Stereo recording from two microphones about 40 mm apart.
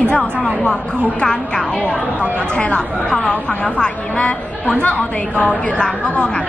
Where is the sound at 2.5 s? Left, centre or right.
Left.